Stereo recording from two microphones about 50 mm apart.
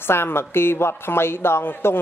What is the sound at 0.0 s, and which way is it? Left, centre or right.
A woman's voice, left.